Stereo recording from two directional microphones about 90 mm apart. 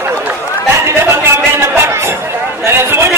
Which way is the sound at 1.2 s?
30° right (ahead or behind).